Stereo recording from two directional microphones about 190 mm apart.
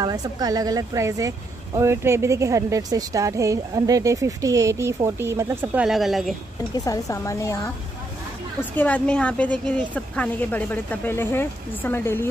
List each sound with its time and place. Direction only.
0.0 s speech: 20° right (ahead or behind); by 6.3 s centre (ahead or behind)
6.7 s a woman's voice: 20° left (ahead or behind)
8.7 s a woman's voice: 5° left (ahead or behind)